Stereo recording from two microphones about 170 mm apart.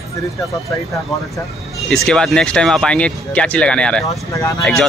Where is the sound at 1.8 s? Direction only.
5° left (ahead or behind).